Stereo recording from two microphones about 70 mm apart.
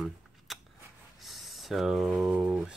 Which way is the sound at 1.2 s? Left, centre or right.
Centre.